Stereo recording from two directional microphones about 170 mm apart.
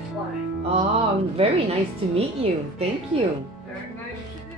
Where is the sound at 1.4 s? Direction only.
35° right (ahead or behind).